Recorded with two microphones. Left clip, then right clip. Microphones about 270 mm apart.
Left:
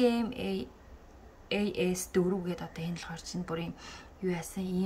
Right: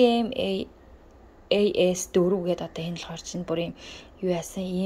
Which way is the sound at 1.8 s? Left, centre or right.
Centre.